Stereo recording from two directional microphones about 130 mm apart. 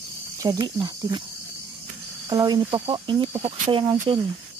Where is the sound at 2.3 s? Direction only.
35° right (ahead or behind).